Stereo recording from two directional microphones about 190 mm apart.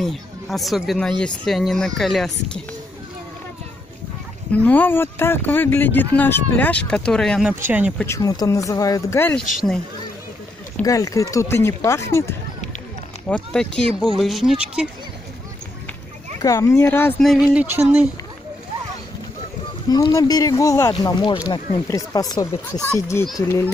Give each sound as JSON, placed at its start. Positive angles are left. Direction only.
{"t": 0.0, "sound": "speech", "side_deg": 0}
{"t": 4.6, "sound": "speech", "side_deg": 10}
{"t": 7.6, "sound": "speech", "side_deg": -10}
{"t": 8.0, "sound": "speech", "side_deg": 15}
{"t": 10.8, "sound": "speech", "side_deg": 15}
{"t": 13.3, "sound": "speech", "side_deg": 5}
{"t": 16.3, "sound": "speech", "side_deg": 15}
{"t": 17.6, "sound": "speech", "side_deg": -10}
{"t": 19.9, "sound": "speech", "side_deg": 20}